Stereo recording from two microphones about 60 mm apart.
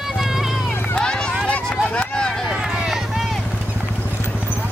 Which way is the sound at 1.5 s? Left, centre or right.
Centre.